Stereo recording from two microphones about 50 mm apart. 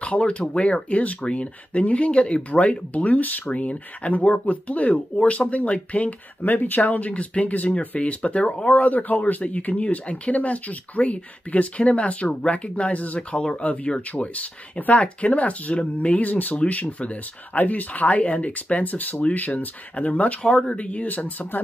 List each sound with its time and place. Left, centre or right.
0.0 s speech: left
20.4 s speech: centre; by 21.5 s left